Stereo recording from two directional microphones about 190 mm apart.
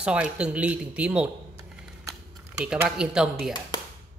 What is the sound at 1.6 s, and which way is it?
Typing, 15° right (ahead or behind).